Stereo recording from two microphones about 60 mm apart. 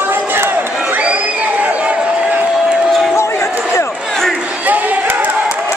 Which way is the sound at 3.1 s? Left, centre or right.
Left.